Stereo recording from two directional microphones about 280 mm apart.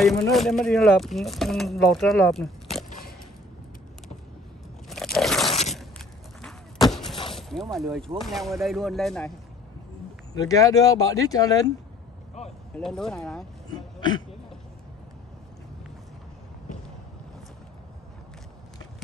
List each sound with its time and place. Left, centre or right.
0.0 s speech: centre
4.8 s crunch: centre
5.5 s a sound: left
5.8 s a sound: centre
7.7 s speech: centre
10.3 s speech: centre
12.7 s speech: centre